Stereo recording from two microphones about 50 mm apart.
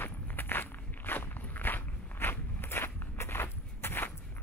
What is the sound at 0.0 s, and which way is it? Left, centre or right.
Walk, left.